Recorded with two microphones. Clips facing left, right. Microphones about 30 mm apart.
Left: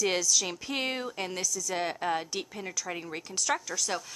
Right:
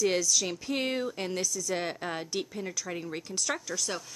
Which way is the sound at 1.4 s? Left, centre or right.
Centre.